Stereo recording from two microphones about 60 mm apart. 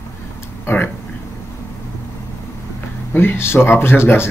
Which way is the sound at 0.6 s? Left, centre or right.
Left.